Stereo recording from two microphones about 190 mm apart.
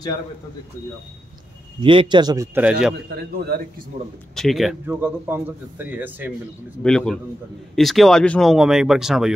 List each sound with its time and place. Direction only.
1.8 s a man's voice: 25° right (ahead or behind); by 2.9 s 5° right (ahead or behind)
3.2 s a man's voice: 55° right (ahead or behind)
4.4 s speech: centre (ahead or behind)
6.8 s speech: 5° left (ahead or behind)